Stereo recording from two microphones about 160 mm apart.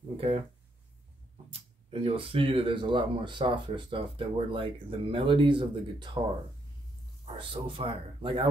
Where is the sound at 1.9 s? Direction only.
35° right (ahead or behind).